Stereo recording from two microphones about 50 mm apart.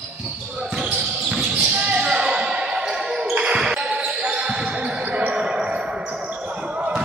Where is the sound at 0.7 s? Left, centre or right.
Centre.